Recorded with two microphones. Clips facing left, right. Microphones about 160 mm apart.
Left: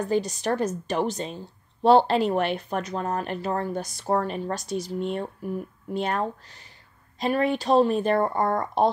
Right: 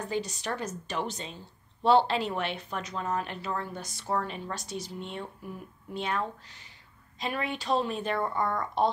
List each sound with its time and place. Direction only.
0.1 s a woman's voice: 45° left (ahead or behind)